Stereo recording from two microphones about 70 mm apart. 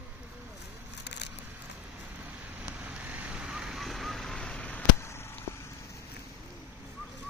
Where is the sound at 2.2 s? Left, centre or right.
Right; by 4.8 s centre.